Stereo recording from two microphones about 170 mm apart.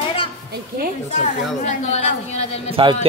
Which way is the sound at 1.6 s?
40° left (ahead or behind).